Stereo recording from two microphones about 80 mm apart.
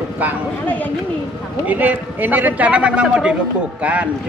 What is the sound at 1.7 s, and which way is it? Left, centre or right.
A man's voice, right.